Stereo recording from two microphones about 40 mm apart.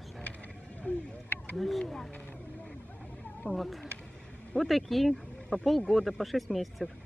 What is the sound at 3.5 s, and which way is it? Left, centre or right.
Speech, centre.